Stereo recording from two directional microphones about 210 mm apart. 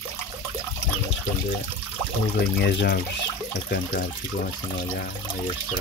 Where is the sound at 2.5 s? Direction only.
50° left (ahead or behind).